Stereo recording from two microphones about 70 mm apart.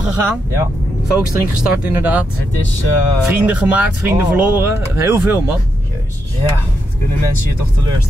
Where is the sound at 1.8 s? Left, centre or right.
Right.